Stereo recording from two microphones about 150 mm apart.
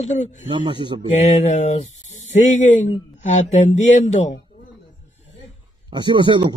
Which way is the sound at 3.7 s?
55° left (ahead or behind).